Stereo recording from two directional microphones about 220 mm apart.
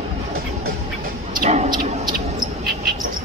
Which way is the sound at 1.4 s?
30° right (ahead or behind).